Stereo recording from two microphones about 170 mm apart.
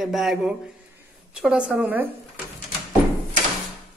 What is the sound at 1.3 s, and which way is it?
Music, 5° right (ahead or behind).